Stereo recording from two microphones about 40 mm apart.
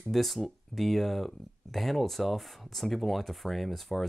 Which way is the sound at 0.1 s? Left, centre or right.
Centre.